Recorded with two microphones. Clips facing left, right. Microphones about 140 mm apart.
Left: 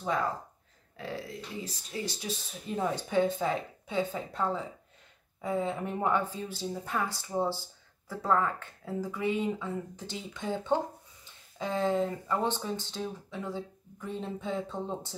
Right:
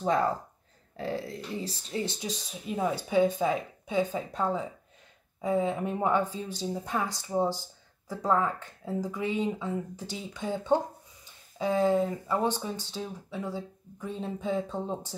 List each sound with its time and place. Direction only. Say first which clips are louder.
0.0 s speech: right 5 dB; 30° right (ahead or behind)
2.0 s speech: right 2 dB; 20° right (ahead or behind)